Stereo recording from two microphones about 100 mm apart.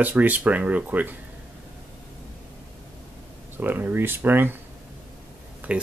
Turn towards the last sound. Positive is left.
turn(degrees=-15)  # may be behind; listen again after turning